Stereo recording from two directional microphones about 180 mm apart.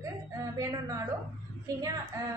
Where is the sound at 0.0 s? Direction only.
15° right (ahead or behind).